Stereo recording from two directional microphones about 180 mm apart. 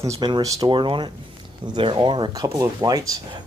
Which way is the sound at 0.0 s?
20° right (ahead or behind).